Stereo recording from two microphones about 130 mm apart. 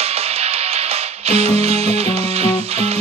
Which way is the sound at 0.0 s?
50° right (ahead or behind).